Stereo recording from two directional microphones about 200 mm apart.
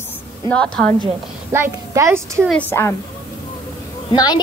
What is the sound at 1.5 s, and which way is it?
A child's voice, 15° right (ahead or behind).